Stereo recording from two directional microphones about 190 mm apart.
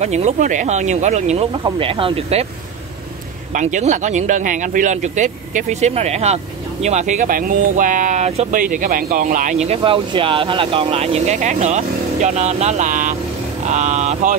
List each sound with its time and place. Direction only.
0.0 s speech: 35° right (ahead or behind)
1.5 s speech: 25° right (ahead or behind)
3.5 s speech: 40° right (ahead or behind)